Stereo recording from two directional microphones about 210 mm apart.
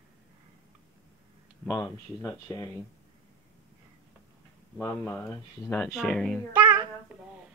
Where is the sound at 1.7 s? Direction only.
15° left (ahead or behind).